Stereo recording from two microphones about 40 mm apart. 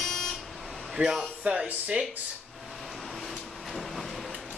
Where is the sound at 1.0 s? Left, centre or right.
Centre.